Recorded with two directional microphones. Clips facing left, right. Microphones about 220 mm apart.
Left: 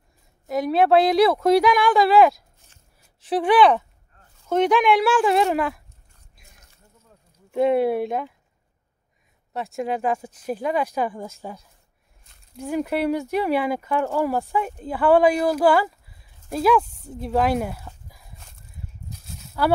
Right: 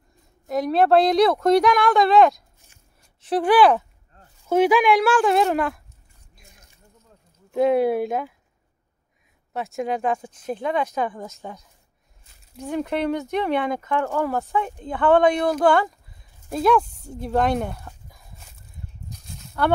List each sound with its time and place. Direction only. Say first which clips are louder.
0.5 s speech: even; centre (ahead or behind)
7.5 s speech: right 1 dB; centre (ahead or behind)
9.5 s speech: even; centre (ahead or behind)
19.0 s a sound: even; 5° left (ahead or behind)